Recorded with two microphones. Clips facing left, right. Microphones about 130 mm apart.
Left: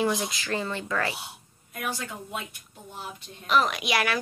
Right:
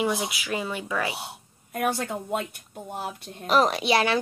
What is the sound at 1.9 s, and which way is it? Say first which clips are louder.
Speech: right 6 dB; 60° right (ahead or behind).